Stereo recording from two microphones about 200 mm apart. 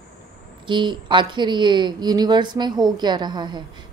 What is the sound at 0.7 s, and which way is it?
Speech, 25° right (ahead or behind).